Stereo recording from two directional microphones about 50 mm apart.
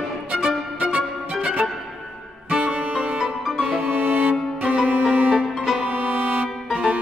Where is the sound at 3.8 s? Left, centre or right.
Right.